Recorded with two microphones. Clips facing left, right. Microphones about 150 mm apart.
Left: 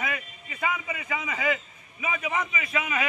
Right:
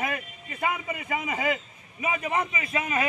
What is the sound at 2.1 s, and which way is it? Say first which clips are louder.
Speech: right 1 dB; 30° right (ahead or behind).